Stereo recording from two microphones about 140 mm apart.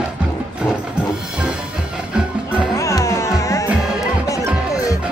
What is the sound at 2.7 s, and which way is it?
Music, 20° left (ahead or behind).